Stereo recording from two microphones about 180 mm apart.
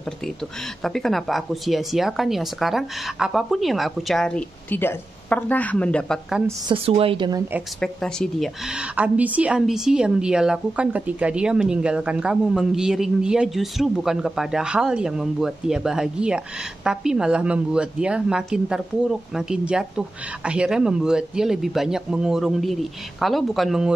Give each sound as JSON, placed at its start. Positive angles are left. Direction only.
{"t": 0.8, "sound": "a woman's voice", "side_deg": 0}
{"t": 6.7, "sound": "a woman's voice", "side_deg": -30}
{"t": 7.8, "sound": "a woman's voice", "side_deg": 5}